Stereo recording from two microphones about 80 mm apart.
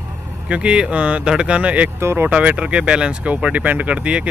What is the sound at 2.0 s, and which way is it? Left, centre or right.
Speech, right.